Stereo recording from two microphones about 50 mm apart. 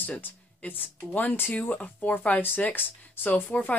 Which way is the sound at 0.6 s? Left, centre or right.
Left.